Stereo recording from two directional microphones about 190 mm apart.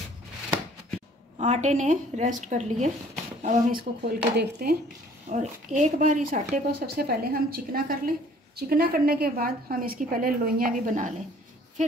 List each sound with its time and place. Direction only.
1.4 s a woman's voice: 40° right (ahead or behind); by 4.7 s 55° right (ahead or behind)
5.3 s a woman's voice: 40° right (ahead or behind)
6.5 s a woman's voice: 55° right (ahead or behind)